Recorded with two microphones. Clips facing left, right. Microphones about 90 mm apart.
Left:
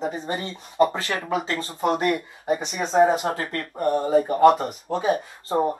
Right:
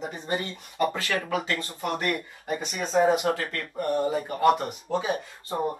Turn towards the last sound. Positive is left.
turn(degrees=35)  # may be behind; listen again after turning